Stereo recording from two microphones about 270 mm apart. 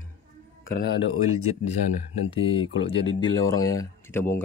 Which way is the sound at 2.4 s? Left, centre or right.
Centre.